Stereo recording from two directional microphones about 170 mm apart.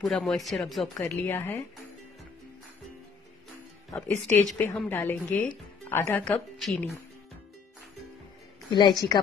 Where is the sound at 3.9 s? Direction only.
10° left (ahead or behind).